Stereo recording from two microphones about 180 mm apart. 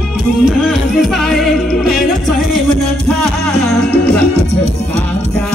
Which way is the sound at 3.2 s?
5° left (ahead or behind).